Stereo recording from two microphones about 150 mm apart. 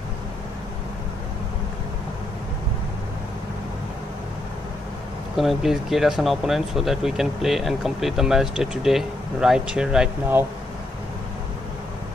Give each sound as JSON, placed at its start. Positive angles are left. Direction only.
{"t": 5.3, "sound": "speech", "side_deg": 0}